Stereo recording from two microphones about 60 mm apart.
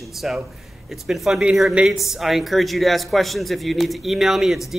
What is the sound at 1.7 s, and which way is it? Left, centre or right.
Speech, centre.